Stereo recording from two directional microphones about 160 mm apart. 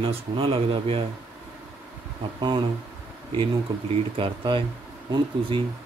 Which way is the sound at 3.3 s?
35° right (ahead or behind).